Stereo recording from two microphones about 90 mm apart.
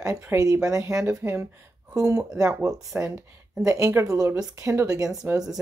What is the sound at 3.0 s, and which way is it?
Speech, 20° right (ahead or behind).